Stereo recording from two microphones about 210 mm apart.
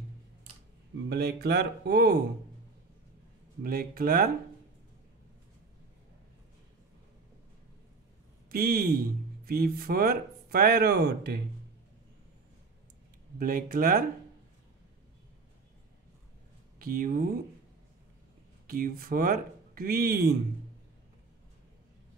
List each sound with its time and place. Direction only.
1.0 s speech: 50° right (ahead or behind)
3.6 s speech: 45° right (ahead or behind)
8.5 s speech: 45° right (ahead or behind)
13.4 s speech: 40° right (ahead or behind)
16.7 s speech: 40° right (ahead or behind)
18.7 s speech: 45° right (ahead or behind)